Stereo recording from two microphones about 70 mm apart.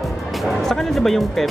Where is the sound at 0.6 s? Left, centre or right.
Centre.